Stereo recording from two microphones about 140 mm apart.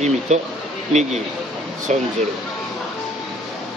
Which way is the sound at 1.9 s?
60° right (ahead or behind).